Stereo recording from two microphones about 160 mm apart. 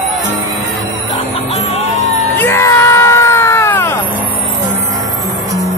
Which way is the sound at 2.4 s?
15° left (ahead or behind).